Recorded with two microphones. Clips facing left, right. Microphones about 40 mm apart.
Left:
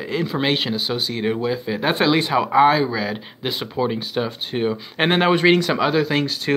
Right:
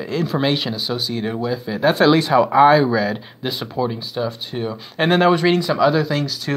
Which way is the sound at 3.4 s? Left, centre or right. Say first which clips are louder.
Left 1 dB; left.